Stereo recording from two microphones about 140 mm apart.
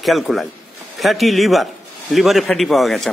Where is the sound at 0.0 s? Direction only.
Centre (ahead or behind).